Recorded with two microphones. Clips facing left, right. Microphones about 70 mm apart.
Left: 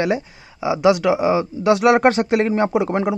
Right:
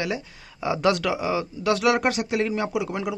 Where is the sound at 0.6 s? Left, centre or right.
Centre.